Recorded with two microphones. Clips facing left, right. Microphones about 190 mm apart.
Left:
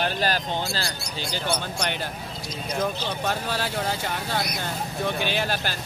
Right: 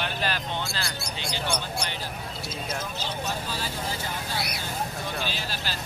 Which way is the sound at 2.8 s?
65° left (ahead or behind).